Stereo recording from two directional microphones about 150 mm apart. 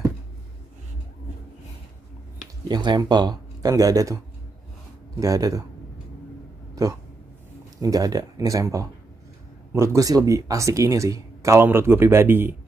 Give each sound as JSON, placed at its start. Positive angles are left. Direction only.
{"t": 2.7, "sound": "speech", "side_deg": -30}
{"t": 5.2, "sound": "speech", "side_deg": -25}
{"t": 6.7, "sound": "a sound", "side_deg": -20}
{"t": 7.8, "sound": "speech", "side_deg": -25}